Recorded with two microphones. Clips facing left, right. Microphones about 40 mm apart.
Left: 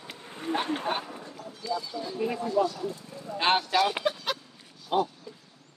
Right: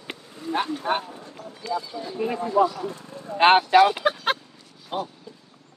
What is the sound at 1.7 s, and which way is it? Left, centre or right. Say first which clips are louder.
Speech: right 3 dB; right.